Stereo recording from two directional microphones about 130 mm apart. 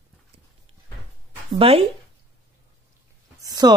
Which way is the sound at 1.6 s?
45° right (ahead or behind).